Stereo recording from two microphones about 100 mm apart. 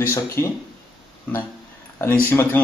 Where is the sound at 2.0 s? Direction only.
20° left (ahead or behind).